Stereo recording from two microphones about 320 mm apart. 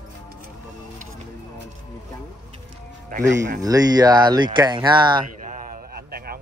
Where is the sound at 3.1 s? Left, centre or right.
Right.